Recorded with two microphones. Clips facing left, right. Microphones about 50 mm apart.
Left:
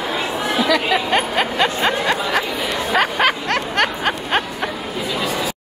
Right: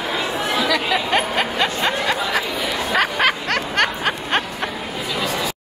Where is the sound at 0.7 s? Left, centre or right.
Centre.